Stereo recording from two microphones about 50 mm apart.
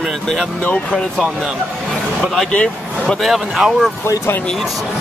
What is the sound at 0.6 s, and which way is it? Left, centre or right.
Speech, left.